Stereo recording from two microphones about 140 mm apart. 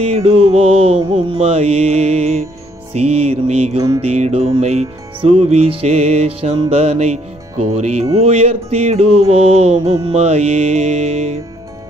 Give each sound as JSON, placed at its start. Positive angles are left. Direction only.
{"t": 0.0, "sound": "music", "side_deg": -45}